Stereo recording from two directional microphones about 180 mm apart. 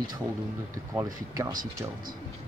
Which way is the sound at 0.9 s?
20° right (ahead or behind).